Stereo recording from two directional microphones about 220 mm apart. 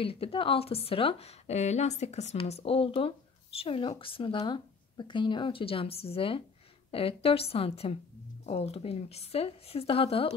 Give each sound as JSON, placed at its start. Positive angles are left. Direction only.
{"t": 0.0, "sound": "speech", "side_deg": 25}